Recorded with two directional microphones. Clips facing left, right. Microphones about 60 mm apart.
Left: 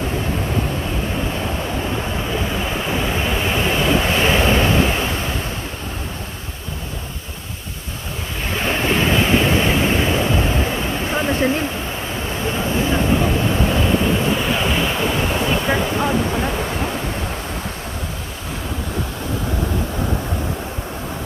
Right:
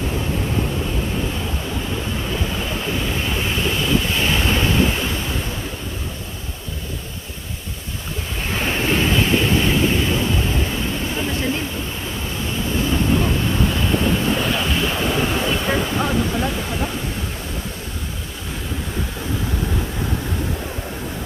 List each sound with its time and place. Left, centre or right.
3.4 s vehicle: left
4.5 s waves: left
8.6 s waves: centre
9.7 s vehicle: left
11.1 s waterfall: left
12.4 s vehicle: left
13.1 s waves: centre
15.6 s a sound: centre